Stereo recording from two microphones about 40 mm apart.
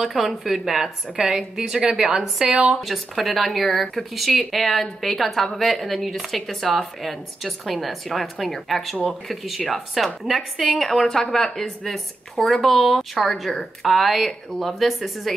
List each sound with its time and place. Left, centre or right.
0.0 s a woman's voice: centre
10.9 s a woman's voice: centre